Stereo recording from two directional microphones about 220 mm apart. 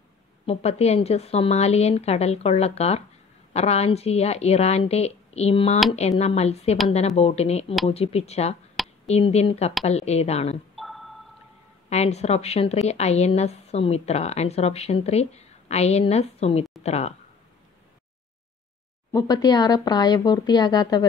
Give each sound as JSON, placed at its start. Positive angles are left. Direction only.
{"t": 0.5, "sound": "a woman's voice", "side_deg": 30}
{"t": 10.8, "sound": "a sound", "side_deg": 0}
{"t": 11.9, "sound": "a woman's voice", "side_deg": 30}
{"t": 19.1, "sound": "speech", "side_deg": 15}